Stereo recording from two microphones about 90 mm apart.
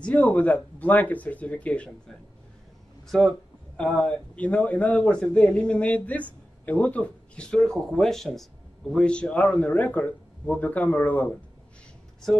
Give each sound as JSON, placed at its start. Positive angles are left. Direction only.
{"t": 0.0, "sound": "speech", "side_deg": 15}
{"t": 3.1, "sound": "speech", "side_deg": 5}